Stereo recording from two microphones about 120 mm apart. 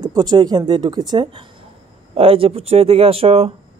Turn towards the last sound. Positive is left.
turn(degrees=-55)  # may be behind; listen again after turning